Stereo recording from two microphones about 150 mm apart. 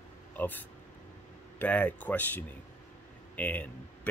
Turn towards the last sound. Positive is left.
turn(degrees=10)  # may be behind; listen again after turning